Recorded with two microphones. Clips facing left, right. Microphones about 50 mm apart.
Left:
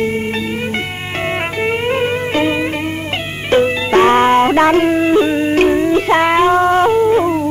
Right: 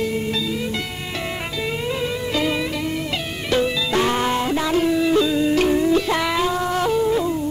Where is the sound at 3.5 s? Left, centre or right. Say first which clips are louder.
Left 8 dB; left.